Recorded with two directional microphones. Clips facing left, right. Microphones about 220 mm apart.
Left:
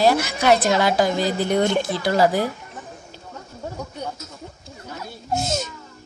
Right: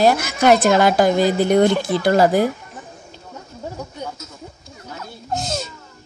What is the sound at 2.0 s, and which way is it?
Speech, 50° right (ahead or behind).